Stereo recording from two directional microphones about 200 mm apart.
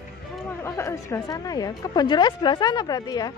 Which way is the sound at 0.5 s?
10° left (ahead or behind).